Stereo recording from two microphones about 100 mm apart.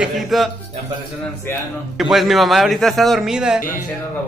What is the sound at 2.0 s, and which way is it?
Speech, centre (ahead or behind).